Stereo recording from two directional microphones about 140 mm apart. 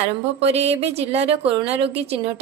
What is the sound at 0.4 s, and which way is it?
A woman's voice, 50° right (ahead or behind).